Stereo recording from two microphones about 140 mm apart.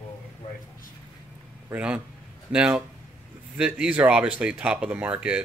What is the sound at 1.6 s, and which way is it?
Speech, 10° right (ahead or behind).